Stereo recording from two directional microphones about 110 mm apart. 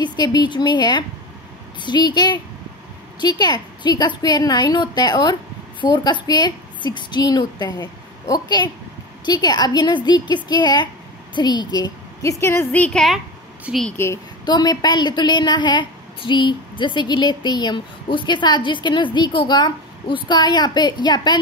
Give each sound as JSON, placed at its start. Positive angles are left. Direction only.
{"t": 0.0, "sound": "a woman's voice", "side_deg": 40}
{"t": 12.7, "sound": "a woman's voice", "side_deg": 10}
{"t": 13.9, "sound": "a woman's voice", "side_deg": 25}
{"t": 14.4, "sound": "a woman's voice", "side_deg": 40}